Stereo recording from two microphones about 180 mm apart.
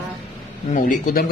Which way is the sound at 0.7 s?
45° left (ahead or behind).